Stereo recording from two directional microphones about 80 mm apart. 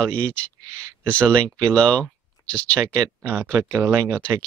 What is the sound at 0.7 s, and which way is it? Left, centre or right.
Speech, right.